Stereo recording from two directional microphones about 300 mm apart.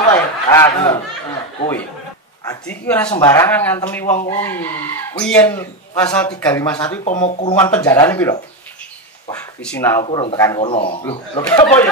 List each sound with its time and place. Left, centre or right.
0.1 s speech: centre
2.4 s speech: centre
7.1 s speech: left
7.5 s speech: centre
9.6 s speech: centre